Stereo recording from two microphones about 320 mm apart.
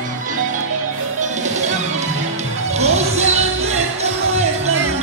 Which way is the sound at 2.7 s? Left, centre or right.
Right.